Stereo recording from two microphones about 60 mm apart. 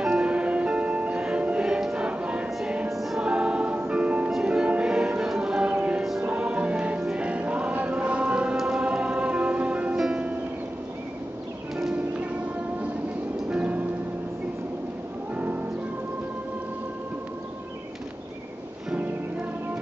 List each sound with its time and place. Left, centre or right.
0.0 s music: centre
2.9 s music: centre
3.2 s music: centre
13.5 s music: right
15.3 s music: right